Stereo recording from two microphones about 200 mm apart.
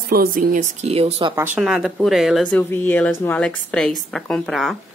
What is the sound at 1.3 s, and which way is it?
Speech, 10° right (ahead or behind).